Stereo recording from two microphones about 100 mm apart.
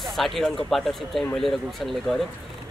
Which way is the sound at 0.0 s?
Centre (ahead or behind).